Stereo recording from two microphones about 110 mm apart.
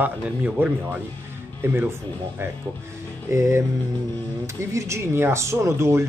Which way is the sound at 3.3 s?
25° right (ahead or behind).